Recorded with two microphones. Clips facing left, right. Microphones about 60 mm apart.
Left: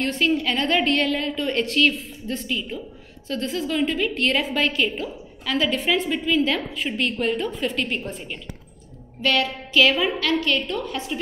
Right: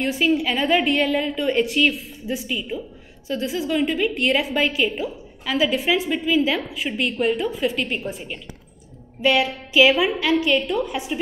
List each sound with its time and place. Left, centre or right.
0.0 s a woman's voice: centre